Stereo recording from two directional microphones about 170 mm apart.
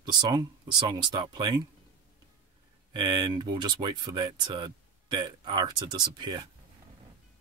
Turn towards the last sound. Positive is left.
turn(degrees=-25)  # may be behind; listen again after turning